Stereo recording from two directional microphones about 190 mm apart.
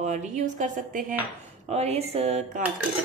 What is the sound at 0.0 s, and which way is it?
Speech, 40° right (ahead or behind).